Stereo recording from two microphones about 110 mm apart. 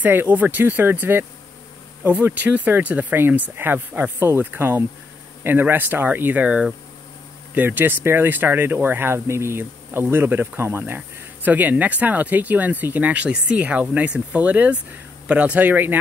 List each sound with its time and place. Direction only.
0.0 s speech: 15° right (ahead or behind)